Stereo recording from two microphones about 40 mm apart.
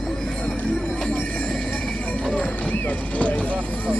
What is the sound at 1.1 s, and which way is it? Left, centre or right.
Horse, left.